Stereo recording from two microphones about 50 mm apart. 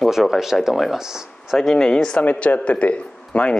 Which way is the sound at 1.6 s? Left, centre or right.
Centre.